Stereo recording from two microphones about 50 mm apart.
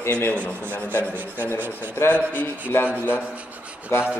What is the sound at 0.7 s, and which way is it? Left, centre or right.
Speech, left.